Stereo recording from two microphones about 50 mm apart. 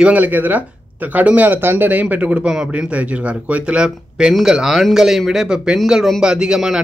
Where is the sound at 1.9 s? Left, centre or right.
Right.